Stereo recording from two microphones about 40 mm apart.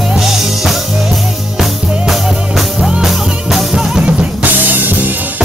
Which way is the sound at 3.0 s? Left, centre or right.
Centre.